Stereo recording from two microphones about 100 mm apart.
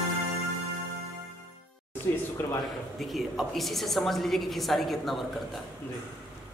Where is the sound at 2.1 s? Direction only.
25° left (ahead or behind).